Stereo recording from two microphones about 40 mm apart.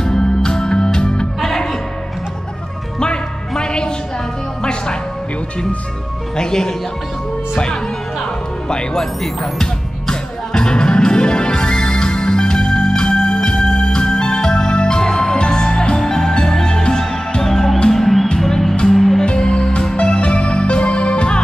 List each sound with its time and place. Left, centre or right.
0.0 s music: centre
3.0 s music: left
6.3 s speech: centre
8.6 s music: centre
16.8 s music: left
17.4 s music: centre
19.2 s music: centre